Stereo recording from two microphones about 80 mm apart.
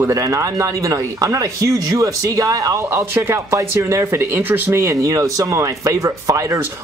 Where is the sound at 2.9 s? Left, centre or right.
Right.